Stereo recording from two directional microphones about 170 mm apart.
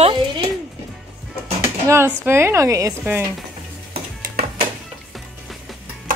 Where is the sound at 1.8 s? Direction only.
15° right (ahead or behind).